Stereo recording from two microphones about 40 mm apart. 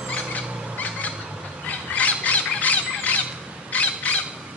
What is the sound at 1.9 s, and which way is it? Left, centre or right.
Squawk, left.